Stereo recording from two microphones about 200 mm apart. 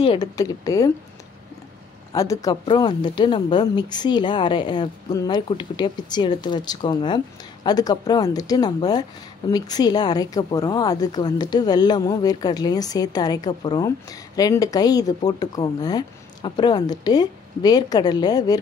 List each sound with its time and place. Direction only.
0.0 s a woman's voice: 25° left (ahead or behind)
0.4 s speech: 15° left (ahead or behind)
2.1 s a woman's voice: 15° left (ahead or behind)